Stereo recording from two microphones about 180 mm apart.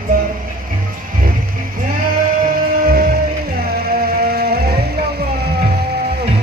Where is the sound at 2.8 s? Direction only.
55° right (ahead or behind).